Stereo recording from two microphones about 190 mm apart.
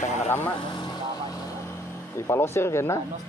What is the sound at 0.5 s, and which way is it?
Vehicle, 25° left (ahead or behind).